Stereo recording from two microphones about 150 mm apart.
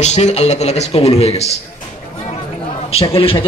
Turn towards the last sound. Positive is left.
turn(degrees=35)  # may be behind; listen again after turning